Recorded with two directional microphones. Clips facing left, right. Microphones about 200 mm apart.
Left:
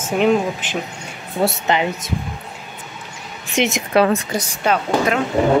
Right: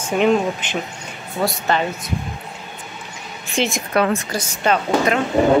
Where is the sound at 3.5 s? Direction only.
20° left (ahead or behind).